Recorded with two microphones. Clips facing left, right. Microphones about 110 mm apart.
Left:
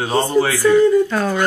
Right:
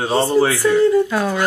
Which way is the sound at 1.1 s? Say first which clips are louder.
Even; 5° right (ahead or behind).